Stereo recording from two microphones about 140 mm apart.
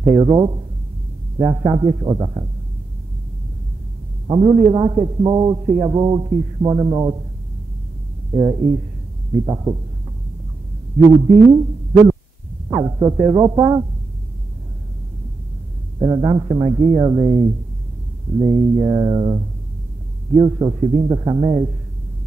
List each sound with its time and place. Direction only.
0.0 s a man's voice: 30° right (ahead or behind)
4.3 s a man's voice: 35° right (ahead or behind)
8.3 s a man's voice: 30° right (ahead or behind)
11.2 s a man's voice: 30° right (ahead or behind)
16.0 s a man's voice: 30° right (ahead or behind)